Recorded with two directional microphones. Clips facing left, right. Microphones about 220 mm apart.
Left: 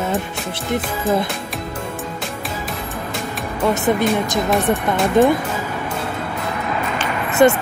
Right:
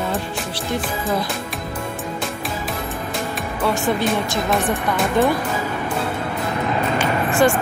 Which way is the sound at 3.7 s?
20° left (ahead or behind).